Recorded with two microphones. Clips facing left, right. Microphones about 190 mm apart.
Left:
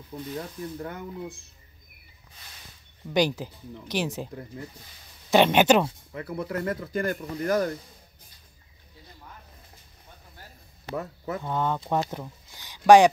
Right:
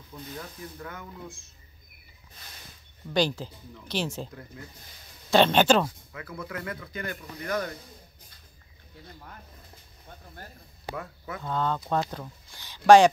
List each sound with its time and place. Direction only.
0.4 s speech: 35° left (ahead or behind)
3.1 s speech: 15° left (ahead or behind)
5.3 s speech: 15° left (ahead or behind)
6.1 s speech: 35° left (ahead or behind)
11.0 s speech: 40° left (ahead or behind)
11.4 s speech: 15° left (ahead or behind)